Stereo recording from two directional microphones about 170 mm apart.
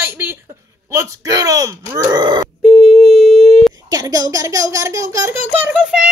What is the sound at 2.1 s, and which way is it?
Grunt, 25° right (ahead or behind).